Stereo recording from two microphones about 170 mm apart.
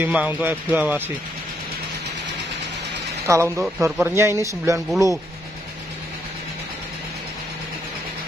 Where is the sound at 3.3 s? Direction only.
15° right (ahead or behind).